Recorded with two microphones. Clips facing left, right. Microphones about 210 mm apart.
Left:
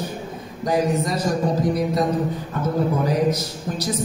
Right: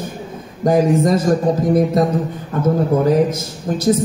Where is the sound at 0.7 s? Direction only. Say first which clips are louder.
Right 7 dB; 50° right (ahead or behind).